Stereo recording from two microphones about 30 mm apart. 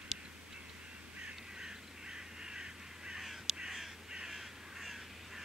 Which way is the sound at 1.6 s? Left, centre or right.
Right.